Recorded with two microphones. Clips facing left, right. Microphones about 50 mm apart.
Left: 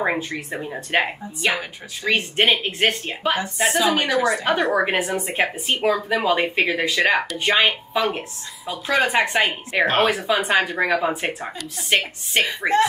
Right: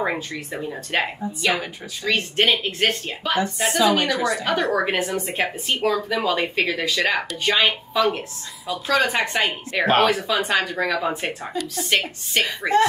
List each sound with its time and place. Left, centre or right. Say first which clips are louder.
0.9 s a woman's voice: left 2 dB; centre
3.3 s a woman's voice: right 3 dB; centre